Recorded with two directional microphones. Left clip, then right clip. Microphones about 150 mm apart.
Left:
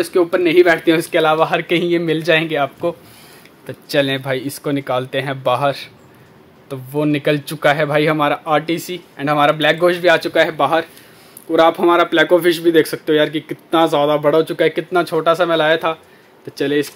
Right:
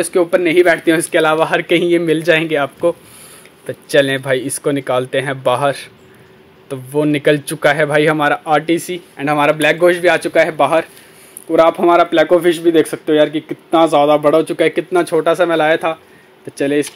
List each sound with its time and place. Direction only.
0.0 s a man's voice: 15° right (ahead or behind)